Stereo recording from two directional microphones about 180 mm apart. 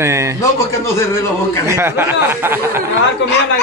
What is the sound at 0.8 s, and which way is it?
Speech, 15° left (ahead or behind).